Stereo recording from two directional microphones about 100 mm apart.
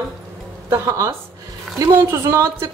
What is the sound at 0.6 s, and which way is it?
Speech, 30° right (ahead or behind).